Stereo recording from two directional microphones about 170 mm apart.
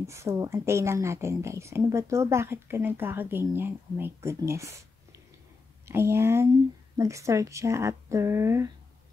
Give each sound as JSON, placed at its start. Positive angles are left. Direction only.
{"t": 0.0, "sound": "speech", "side_deg": -15}